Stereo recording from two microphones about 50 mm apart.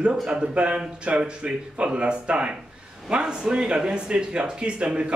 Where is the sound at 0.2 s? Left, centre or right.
Centre.